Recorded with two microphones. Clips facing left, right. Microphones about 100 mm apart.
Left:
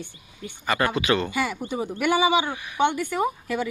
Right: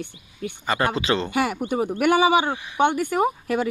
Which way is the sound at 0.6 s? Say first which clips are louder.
Even; 25° right (ahead or behind).